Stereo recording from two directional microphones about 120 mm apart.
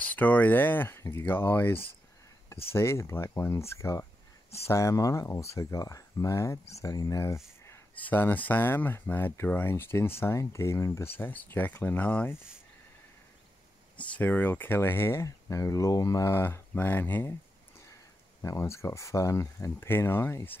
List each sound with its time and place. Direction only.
0.0 s speech: 15° left (ahead or behind)
13.9 s speech: 15° left (ahead or behind)
18.4 s speech: 25° left (ahead or behind)